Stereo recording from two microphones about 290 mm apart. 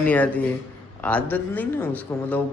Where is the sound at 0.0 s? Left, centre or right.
Centre.